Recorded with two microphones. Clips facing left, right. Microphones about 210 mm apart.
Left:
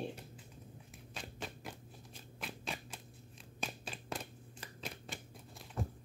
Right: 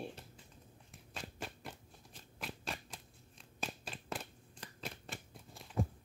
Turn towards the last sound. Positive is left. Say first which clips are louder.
# right 4 dB
turn(degrees=0)  # may be behind; listen again after turning